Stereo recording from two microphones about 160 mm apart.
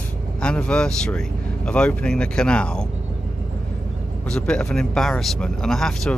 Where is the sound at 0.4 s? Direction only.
5° left (ahead or behind).